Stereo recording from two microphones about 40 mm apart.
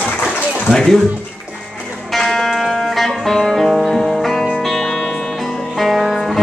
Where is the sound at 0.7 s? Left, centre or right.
Centre.